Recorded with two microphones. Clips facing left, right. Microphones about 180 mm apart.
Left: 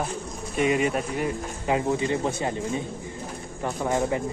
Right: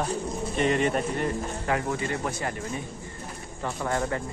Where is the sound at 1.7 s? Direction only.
20° left (ahead or behind).